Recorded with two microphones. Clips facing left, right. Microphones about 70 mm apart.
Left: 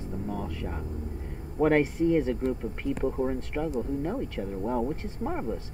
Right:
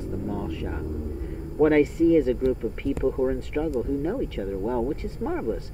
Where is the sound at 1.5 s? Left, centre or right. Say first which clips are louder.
Right 4 dB; centre.